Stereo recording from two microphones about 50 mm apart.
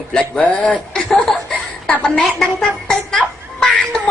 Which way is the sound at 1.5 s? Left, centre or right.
Centre.